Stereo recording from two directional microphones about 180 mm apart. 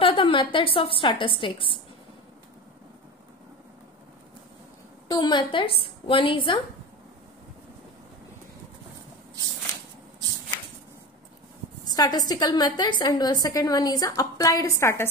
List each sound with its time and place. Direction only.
0.0 s a woman's voice: 30° left (ahead or behind)
5.0 s a woman's voice: 25° left (ahead or behind)
11.8 s a woman's voice: 20° left (ahead or behind)